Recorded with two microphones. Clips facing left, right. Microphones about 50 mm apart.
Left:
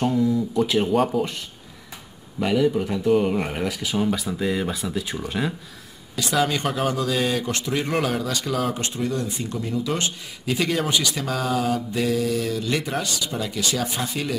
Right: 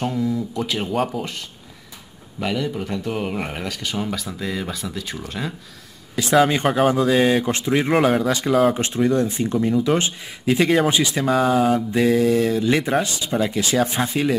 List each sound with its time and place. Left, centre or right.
0.0 s speech: centre
2.4 s speech: centre
3.6 s speech: centre
6.3 s speech: right